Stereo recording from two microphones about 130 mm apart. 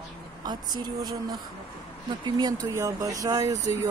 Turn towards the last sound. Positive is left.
turn(degrees=-25)  # may be behind; listen again after turning